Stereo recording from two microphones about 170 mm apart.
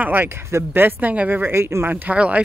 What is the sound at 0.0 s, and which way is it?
Speech, 10° right (ahead or behind).